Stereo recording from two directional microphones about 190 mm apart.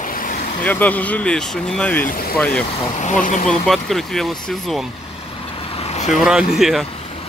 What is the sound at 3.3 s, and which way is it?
Speech, 40° left (ahead or behind).